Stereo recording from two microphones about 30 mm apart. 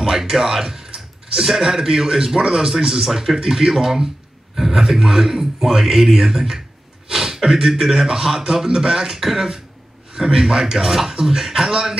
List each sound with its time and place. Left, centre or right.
0.0 s speech: centre